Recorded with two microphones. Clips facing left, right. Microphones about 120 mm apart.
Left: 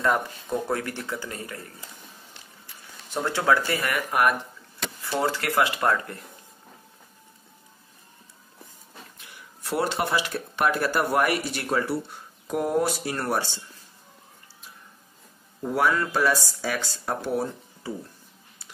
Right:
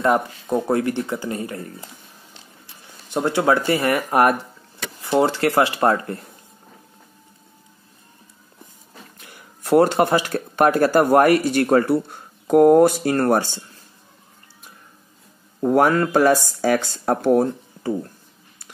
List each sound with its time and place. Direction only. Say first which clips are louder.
0.0 s speech: right 5 dB; 25° right (ahead or behind)
3.1 s speech: right 5 dB; 20° right (ahead or behind)
4.1 s speech: right 5 dB; 40° right (ahead or behind)
5.0 s speech: right 8 dB; 25° right (ahead or behind)
9.2 s speech: right 6 dB; 45° right (ahead or behind)
15.6 s speech: right 7 dB; 50° right (ahead or behind)